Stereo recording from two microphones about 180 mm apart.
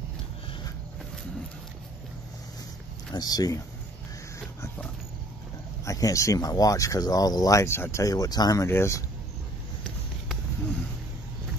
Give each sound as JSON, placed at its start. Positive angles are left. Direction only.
{"t": 3.1, "sound": "speech", "side_deg": 20}
{"t": 5.9, "sound": "speech", "side_deg": 20}